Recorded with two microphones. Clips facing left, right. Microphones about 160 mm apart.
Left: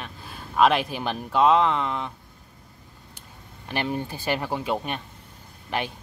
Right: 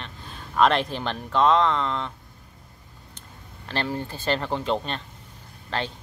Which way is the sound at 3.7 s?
15° left (ahead or behind).